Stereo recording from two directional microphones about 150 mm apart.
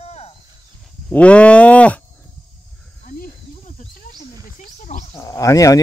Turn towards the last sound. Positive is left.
turn(degrees=20)  # may be behind; listen again after turning